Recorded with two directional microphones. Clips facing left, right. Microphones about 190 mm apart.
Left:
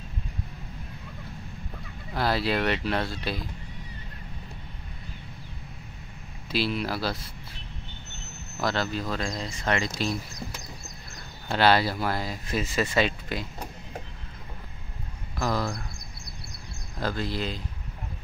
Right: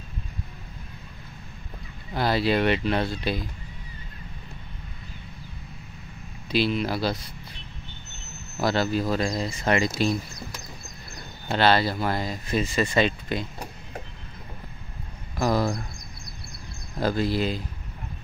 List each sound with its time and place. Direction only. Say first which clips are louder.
2.1 s speech: right 3 dB; centre (ahead or behind)
6.5 s speech: right 4 dB; 5° left (ahead or behind)
11.5 s speech: right 1 dB; 10° left (ahead or behind)
15.3 s speech: right 5 dB; 15° right (ahead or behind)
17.0 s speech: right 6 dB; 10° right (ahead or behind)